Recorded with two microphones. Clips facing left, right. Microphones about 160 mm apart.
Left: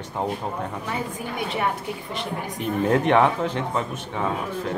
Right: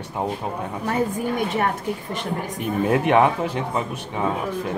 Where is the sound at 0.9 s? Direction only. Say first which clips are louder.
Right 7 dB; 45° right (ahead or behind).